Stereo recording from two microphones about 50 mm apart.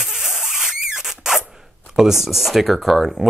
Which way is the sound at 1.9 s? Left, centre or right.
Centre.